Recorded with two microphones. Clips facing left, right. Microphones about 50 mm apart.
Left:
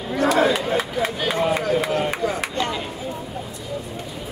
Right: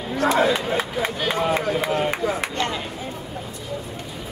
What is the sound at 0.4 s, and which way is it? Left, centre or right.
Speech, centre.